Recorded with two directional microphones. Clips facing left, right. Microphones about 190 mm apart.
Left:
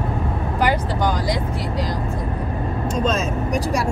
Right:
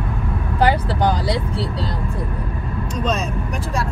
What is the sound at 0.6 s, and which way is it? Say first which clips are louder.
Speech: right 3 dB; 30° right (ahead or behind).